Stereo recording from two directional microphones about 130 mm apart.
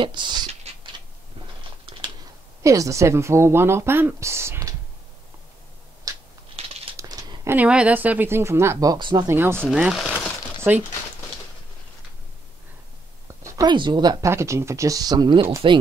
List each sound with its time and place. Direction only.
0.0 s speech: 35° right (ahead or behind)
1.9 s typing: 45° right (ahead or behind)
2.6 s speech: 25° right (ahead or behind)
6.1 s a sound: 25° right (ahead or behind)
6.5 s crumpling: 50° right (ahead or behind)
7.0 s a sound: 25° right (ahead or behind)
7.5 s speech: 10° right (ahead or behind); by 9.3 s 35° right (ahead or behind)
9.3 s speech: 20° right (ahead or behind)
9.8 s speech: 5° right (ahead or behind)
13.3 s a sound: 25° right (ahead or behind)
13.7 s speech: 35° right (ahead or behind)
14.2 s speech: 20° right (ahead or behind); by 15.8 s 40° right (ahead or behind)